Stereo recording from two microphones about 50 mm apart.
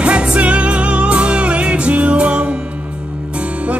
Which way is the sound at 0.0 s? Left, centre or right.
Centre.